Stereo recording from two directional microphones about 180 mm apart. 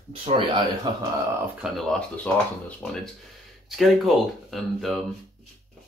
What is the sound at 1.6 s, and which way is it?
Speech, centre (ahead or behind).